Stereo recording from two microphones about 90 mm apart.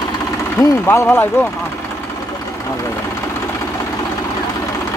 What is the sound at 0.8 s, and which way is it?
Speech, 25° left (ahead or behind).